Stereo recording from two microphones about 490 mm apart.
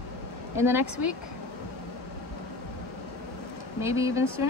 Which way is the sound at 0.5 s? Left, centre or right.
Centre.